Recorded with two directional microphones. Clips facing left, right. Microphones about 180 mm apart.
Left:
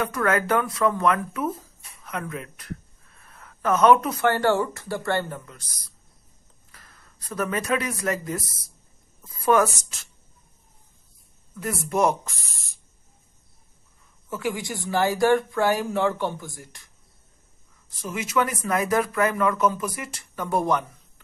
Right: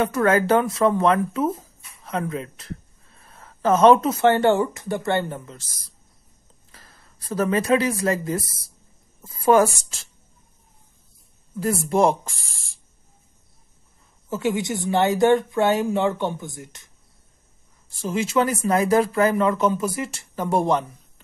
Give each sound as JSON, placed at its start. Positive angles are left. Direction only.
{"t": 0.0, "sound": "speech", "side_deg": -25}
{"t": 6.7, "sound": "speech", "side_deg": -30}
{"t": 11.5, "sound": "speech", "side_deg": -30}
{"t": 14.3, "sound": "speech", "side_deg": -25}